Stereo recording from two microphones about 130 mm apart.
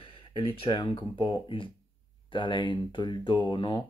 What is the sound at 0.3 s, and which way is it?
Speech, 40° left (ahead or behind).